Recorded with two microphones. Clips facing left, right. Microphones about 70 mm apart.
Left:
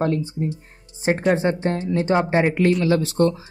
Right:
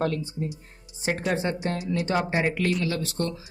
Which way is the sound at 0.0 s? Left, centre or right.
Left.